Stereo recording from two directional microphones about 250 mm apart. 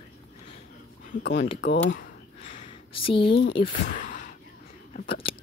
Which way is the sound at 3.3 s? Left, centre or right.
Left.